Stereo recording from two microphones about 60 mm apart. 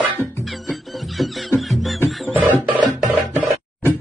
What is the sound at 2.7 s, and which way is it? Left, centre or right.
Music, right.